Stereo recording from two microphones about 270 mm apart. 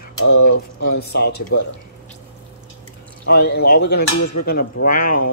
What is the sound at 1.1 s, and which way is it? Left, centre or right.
Speech, left.